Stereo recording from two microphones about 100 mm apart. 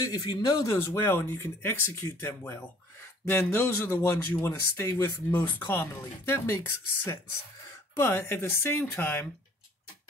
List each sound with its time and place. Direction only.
0.1 s speech: 45° left (ahead or behind)
0.4 s speech: 35° left (ahead or behind); by 9.3 s 20° left (ahead or behind)